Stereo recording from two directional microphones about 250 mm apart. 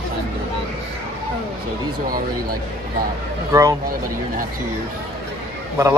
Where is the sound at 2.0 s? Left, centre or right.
Right.